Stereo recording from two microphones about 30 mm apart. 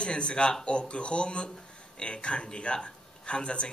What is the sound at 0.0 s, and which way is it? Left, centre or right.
Speech, left.